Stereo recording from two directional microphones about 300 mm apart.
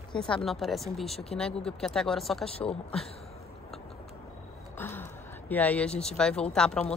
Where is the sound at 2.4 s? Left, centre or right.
Centre.